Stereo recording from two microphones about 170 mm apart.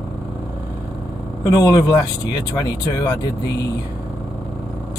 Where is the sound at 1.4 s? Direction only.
20° left (ahead or behind).